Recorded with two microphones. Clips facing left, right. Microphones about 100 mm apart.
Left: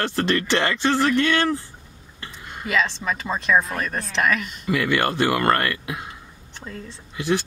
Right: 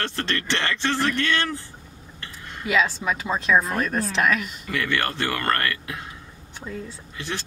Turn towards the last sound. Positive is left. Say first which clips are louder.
# left 9 dB
turn(degrees=10)  # may be behind; listen again after turning